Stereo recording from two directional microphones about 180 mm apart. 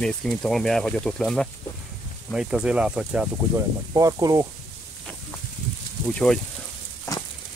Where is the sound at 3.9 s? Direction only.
20° right (ahead or behind).